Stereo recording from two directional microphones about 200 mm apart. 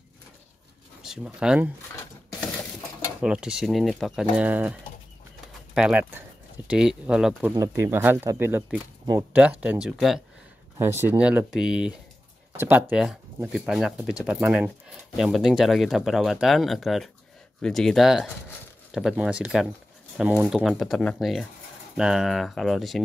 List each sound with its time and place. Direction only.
1.0 s speech: 5° right (ahead or behind)
3.2 s speech: 5° right (ahead or behind)
5.8 s speech: 5° right (ahead or behind)
7.5 s speech: 15° right (ahead or behind)